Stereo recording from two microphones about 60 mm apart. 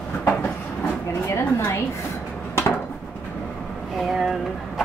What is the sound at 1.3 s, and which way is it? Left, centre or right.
Speech, left.